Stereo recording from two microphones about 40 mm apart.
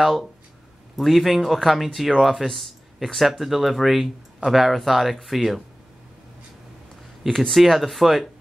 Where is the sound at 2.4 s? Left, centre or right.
Centre.